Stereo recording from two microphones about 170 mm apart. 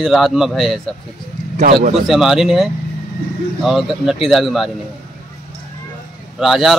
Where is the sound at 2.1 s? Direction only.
Centre (ahead or behind).